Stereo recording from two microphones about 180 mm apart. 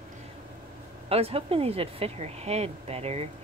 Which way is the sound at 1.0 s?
35° right (ahead or behind).